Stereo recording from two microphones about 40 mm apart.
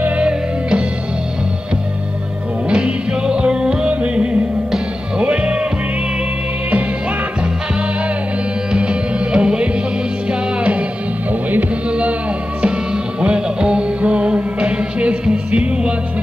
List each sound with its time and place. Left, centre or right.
0.2 s music: right
2.7 s music: right
8.7 s music: right
11.9 s music: right